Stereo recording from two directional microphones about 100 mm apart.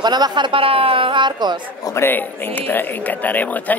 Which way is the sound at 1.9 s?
20° left (ahead or behind).